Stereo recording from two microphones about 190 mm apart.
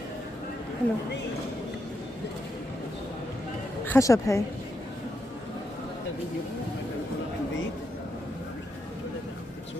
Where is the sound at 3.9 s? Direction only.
15° left (ahead or behind).